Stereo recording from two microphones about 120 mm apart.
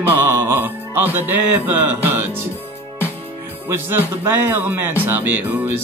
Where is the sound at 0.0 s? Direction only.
15° right (ahead or behind).